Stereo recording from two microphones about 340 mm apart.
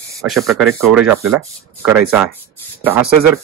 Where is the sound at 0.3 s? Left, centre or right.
Centre.